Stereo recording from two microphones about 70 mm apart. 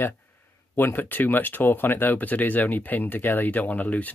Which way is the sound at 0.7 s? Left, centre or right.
Left.